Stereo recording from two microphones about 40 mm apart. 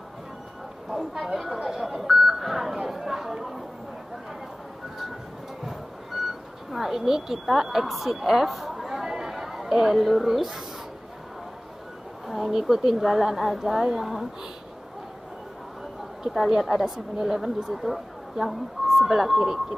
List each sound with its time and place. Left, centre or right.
0.8 s a sound: centre
1.2 s speech: centre
6.7 s a woman's voice: centre
12.3 s a woman's voice: centre
16.3 s a woman's voice: centre